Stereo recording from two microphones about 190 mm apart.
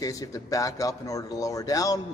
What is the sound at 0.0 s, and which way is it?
A man's voice, 20° left (ahead or behind).